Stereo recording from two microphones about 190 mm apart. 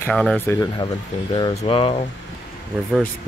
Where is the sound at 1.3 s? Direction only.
25° left (ahead or behind).